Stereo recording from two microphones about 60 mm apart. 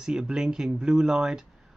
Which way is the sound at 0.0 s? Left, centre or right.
Centre.